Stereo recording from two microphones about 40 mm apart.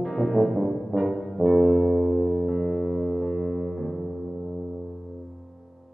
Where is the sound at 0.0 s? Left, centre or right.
Centre.